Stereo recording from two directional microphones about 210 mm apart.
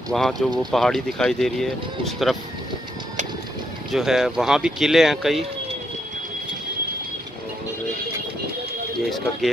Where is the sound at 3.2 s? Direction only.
35° right (ahead or behind).